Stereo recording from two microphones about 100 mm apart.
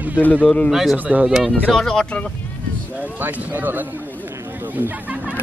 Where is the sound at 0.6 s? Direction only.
Centre (ahead or behind).